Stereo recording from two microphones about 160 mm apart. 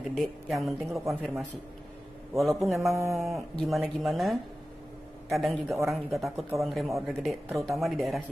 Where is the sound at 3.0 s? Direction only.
15° right (ahead or behind).